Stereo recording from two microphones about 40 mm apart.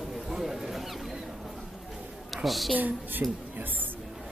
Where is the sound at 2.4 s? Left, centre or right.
Centre.